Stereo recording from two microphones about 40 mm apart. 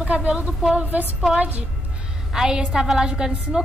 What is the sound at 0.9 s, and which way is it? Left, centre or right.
Speech, right.